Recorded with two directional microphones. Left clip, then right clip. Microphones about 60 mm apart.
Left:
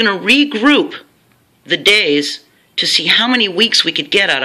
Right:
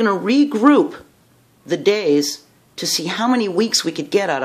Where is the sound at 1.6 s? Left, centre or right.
Right.